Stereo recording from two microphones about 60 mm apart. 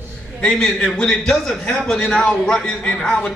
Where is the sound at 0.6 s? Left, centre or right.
Centre.